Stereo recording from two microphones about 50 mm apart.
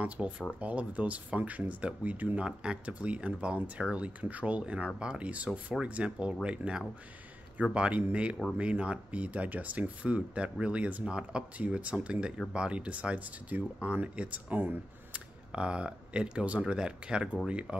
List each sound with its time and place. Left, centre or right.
0.0 s speech: right
2.4 s speech: centre